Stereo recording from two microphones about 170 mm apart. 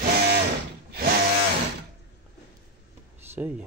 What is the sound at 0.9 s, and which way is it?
Tools, 70° right (ahead or behind).